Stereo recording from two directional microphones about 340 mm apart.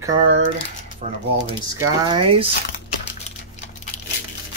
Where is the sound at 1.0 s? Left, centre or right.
Centre.